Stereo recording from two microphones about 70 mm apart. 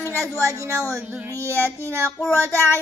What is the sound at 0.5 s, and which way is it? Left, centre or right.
Speech, right.